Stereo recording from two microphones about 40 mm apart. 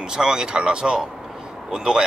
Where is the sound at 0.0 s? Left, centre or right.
Centre.